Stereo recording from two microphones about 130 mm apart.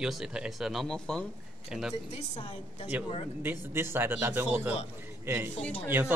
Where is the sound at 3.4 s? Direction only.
15° right (ahead or behind).